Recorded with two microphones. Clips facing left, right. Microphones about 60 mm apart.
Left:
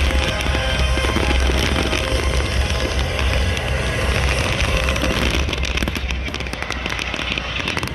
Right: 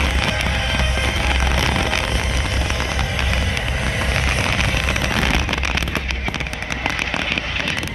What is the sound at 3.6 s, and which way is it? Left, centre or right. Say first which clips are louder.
Vehicle: even; left.